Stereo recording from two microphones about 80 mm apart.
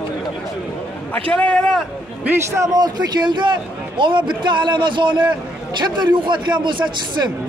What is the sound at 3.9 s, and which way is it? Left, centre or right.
A man's voice, right.